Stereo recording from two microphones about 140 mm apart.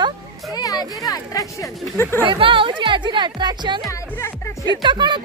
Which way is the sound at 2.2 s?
35° right (ahead or behind).